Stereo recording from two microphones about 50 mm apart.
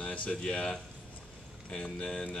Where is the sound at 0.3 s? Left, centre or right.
Centre.